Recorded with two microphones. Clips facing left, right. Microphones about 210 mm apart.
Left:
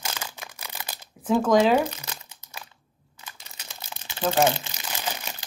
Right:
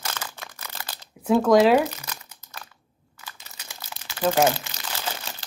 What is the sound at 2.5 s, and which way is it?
Crunch, 20° left (ahead or behind).